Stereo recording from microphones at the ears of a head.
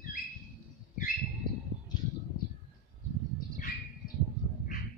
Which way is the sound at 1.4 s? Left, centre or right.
Left.